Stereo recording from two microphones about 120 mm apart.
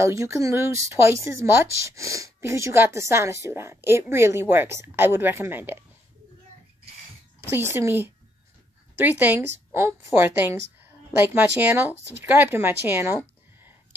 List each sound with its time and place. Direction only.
0.0 s speech: 25° right (ahead or behind)
7.4 s speech: 20° right (ahead or behind)
9.8 s a woman's voice: 25° right (ahead or behind)